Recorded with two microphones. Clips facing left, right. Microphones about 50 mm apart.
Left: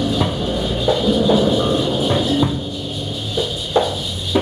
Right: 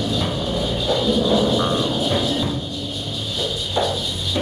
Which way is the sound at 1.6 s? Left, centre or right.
Centre.